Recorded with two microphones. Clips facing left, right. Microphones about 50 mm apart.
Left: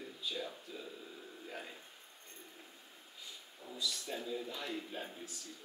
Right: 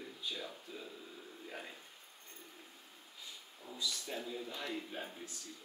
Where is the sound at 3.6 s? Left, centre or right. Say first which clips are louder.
Left 1 dB; centre.